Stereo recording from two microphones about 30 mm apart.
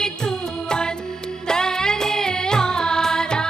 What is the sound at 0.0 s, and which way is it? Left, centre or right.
Music, centre.